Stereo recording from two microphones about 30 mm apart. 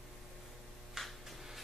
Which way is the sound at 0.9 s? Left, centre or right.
Centre.